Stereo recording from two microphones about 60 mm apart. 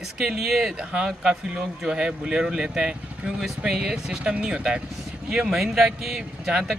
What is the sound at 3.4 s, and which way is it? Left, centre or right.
Speech, centre.